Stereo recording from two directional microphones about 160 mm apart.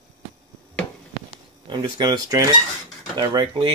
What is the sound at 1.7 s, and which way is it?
Speech, 25° right (ahead or behind).